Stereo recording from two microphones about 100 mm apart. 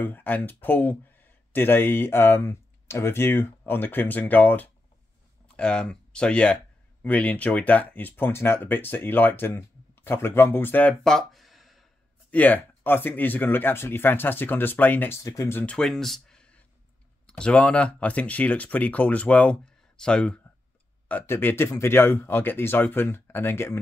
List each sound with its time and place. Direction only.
0.0 s speech: 20° left (ahead or behind)
11.1 s a sound: centre (ahead or behind)
12.3 s speech: 15° left (ahead or behind)
15.2 s speech: 30° left (ahead or behind)
15.6 s speech: 5° left (ahead or behind)
21.1 s speech: 20° left (ahead or behind)